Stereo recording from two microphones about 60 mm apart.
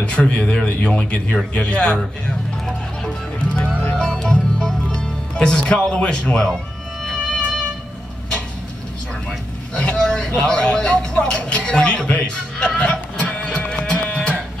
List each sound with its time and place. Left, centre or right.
0.0 s speech: centre
4.0 s music: centre
5.9 s a man's voice: centre
7.1 s music: centre
9.8 s speech: centre